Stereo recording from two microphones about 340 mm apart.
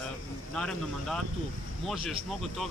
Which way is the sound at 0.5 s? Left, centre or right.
Centre.